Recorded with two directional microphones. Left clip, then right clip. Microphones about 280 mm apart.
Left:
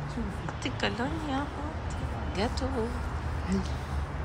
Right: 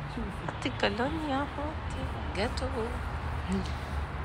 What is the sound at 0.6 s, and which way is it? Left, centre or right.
Speech, centre.